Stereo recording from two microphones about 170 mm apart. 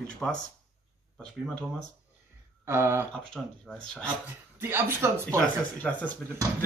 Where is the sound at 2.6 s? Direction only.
15° right (ahead or behind).